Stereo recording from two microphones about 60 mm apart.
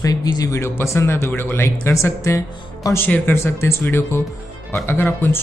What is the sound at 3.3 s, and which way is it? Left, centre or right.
Speech, left.